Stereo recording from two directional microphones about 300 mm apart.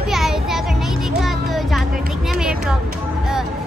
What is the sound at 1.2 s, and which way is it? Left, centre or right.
Music, centre.